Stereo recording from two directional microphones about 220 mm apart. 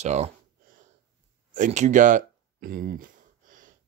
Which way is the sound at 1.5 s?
35° right (ahead or behind).